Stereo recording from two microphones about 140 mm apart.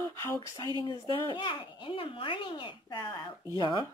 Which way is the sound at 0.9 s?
35° left (ahead or behind).